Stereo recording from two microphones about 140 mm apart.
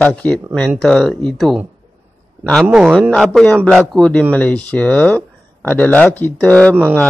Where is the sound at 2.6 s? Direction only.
5° right (ahead or behind).